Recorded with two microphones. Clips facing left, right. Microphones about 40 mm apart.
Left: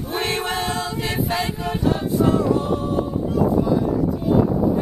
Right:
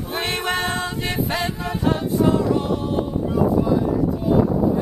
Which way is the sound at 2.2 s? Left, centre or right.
Centre.